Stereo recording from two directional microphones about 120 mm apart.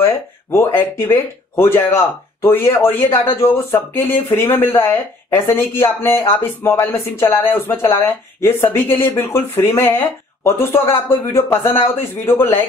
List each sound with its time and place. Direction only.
0.0 s speech: 20° left (ahead or behind)